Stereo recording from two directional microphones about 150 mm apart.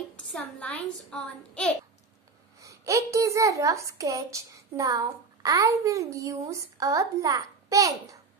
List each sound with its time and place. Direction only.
0.1 s a sound: 5° left (ahead or behind)
1.1 s speech: 5° left (ahead or behind)
2.6 s a child's voice: 20° right (ahead or behind)